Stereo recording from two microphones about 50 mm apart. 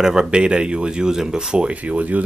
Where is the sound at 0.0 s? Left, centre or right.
Centre.